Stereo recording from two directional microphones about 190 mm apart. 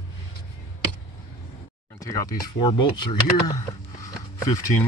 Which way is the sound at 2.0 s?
15° left (ahead or behind).